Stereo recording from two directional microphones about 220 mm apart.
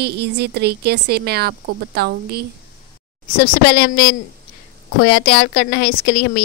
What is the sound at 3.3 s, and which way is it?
Speech, 40° left (ahead or behind).